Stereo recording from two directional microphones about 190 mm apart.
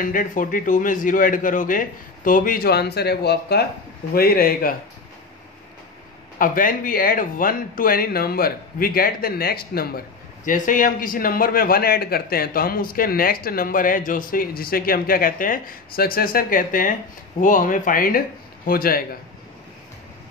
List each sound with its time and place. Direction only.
0.0 s speech: 45° left (ahead or behind)
6.3 s speech: 45° left (ahead or behind)